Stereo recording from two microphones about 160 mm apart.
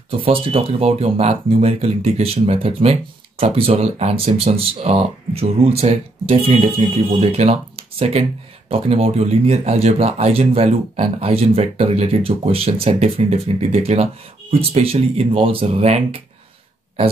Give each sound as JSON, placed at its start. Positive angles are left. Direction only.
{"t": 0.2, "sound": "speech", "side_deg": -35}